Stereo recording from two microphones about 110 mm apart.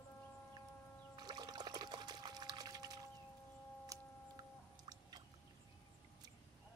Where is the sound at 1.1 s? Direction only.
40° right (ahead or behind).